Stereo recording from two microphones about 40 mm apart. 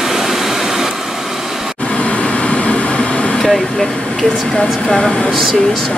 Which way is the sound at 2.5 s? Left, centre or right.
Left.